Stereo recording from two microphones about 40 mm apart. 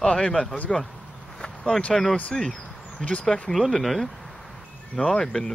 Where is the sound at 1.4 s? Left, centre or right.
Centre.